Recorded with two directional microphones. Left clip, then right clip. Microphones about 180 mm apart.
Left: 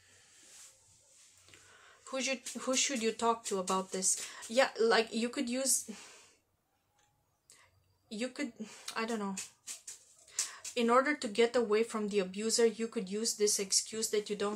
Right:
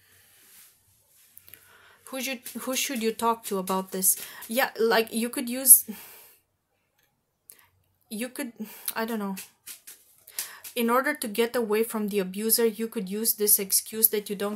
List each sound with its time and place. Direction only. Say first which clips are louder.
1.4 s speech: right 5 dB; 45° right (ahead or behind)
8.1 s speech: right 4 dB; 45° right (ahead or behind)